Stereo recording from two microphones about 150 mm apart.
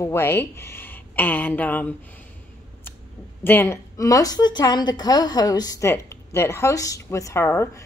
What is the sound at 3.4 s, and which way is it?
A woman's voice, 15° left (ahead or behind).